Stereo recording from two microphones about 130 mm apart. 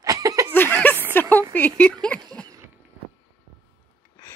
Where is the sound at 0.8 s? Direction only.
15° left (ahead or behind).